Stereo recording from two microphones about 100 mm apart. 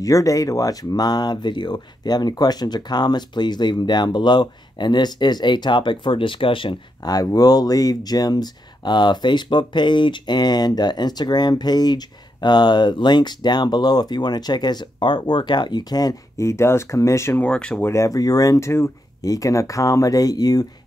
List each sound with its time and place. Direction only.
0.0 s speech: 35° left (ahead or behind); by 6.8 s 60° left (ahead or behind)
7.0 s speech: 40° left (ahead or behind)
17.4 s speech: 10° left (ahead or behind)
17.8 s speech: 30° left (ahead or behind)